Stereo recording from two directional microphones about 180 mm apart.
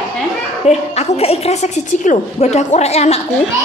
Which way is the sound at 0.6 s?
40° left (ahead or behind).